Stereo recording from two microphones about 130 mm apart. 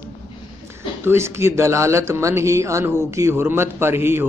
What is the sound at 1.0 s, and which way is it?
A man's voice, 20° right (ahead or behind).